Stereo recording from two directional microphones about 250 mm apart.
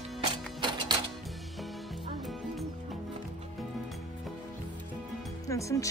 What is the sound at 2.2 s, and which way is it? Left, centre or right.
Music, centre.